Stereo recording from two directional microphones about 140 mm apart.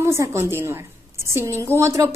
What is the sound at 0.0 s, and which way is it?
A woman's voice, 20° right (ahead or behind).